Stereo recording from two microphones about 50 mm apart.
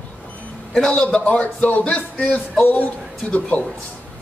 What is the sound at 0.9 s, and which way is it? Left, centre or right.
Speech, left.